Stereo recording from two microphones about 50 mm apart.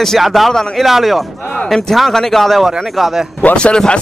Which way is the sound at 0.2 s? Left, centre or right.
Centre.